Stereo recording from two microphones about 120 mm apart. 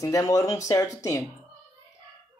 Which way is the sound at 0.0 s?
25° left (ahead or behind).